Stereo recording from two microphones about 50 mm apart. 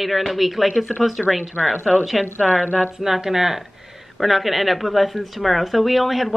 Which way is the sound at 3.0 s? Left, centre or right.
Centre.